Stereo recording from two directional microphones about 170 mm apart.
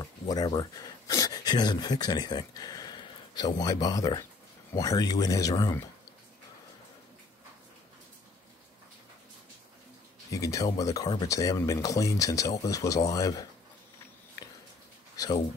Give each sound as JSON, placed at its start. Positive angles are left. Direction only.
{"t": 0.0, "sound": "speech", "side_deg": 25}
{"t": 10.3, "sound": "speech", "side_deg": 20}